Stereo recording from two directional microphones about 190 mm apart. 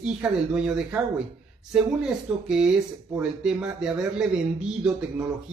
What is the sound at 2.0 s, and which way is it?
Speech, 5° right (ahead or behind).